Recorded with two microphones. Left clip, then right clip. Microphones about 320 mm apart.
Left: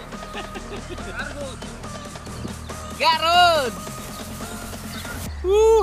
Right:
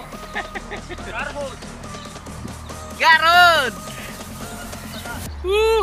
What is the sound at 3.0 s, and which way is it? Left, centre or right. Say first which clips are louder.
Speech: right 4 dB; centre.